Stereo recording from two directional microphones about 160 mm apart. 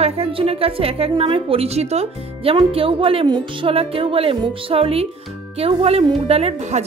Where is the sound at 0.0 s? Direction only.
35° right (ahead or behind).